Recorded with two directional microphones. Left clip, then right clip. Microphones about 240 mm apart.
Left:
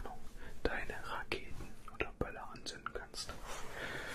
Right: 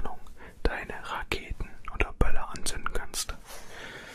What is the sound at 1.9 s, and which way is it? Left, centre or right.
Whispering, right.